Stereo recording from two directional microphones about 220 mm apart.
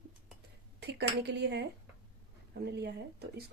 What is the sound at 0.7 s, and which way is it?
Speech, 50° right (ahead or behind).